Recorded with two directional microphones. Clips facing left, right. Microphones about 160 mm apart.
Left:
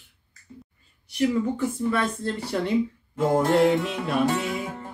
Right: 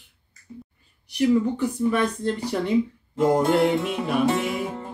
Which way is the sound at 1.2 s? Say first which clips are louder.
Right 3 dB; 15° right (ahead or behind).